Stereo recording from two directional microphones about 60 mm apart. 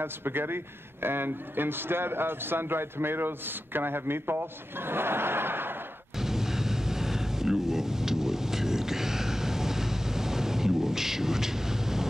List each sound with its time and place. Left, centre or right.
0.0 s a man's voice: right
6.1 s vehicle: centre